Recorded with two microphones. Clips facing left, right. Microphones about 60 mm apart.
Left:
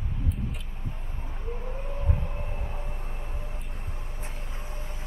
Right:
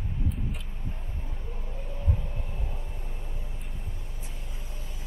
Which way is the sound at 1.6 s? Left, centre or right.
Left.